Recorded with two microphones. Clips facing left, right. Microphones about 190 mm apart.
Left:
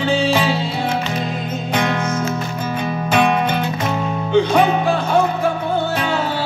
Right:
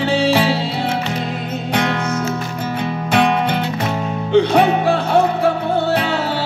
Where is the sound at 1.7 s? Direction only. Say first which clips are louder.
Even; 65° right (ahead or behind).